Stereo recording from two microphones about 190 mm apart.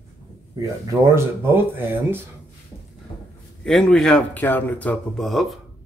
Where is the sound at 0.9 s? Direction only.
10° right (ahead or behind).